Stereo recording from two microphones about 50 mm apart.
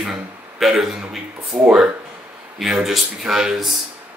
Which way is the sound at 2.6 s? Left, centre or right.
Centre.